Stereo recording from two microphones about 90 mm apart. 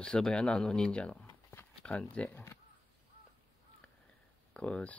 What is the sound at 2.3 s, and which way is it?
Speech, 30° left (ahead or behind).